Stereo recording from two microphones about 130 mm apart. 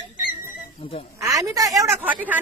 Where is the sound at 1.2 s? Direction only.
25° right (ahead or behind).